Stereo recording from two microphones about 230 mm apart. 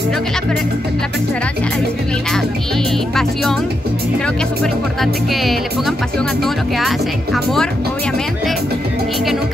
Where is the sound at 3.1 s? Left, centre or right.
Centre.